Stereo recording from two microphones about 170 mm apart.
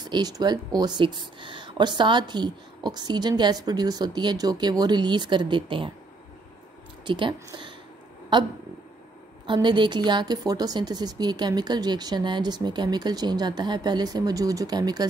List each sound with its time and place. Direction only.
0.0 s speech: 25° right (ahead or behind)
7.1 s speech: 30° right (ahead or behind)
9.5 s speech: 25° right (ahead or behind)